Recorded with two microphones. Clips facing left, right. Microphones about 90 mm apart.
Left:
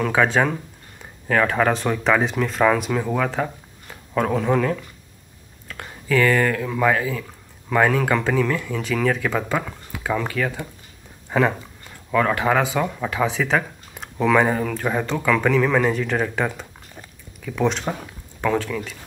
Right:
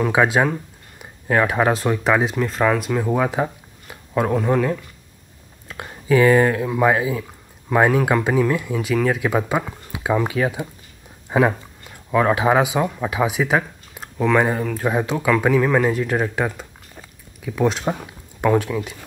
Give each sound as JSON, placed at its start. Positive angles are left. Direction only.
{"t": 0.0, "sound": "speech", "side_deg": -10}
{"t": 5.7, "sound": "speech", "side_deg": -20}